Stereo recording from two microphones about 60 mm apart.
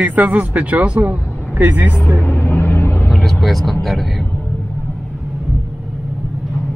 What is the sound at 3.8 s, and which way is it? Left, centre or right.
Speech, centre.